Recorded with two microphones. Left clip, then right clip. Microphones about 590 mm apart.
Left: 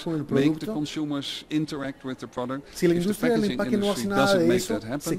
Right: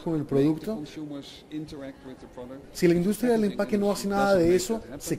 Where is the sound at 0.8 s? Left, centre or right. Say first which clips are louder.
Left 8 dB; left.